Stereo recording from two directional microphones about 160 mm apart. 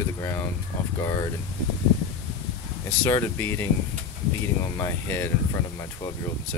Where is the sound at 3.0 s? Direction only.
15° left (ahead or behind).